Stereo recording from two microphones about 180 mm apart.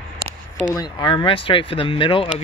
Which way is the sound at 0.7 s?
25° left (ahead or behind).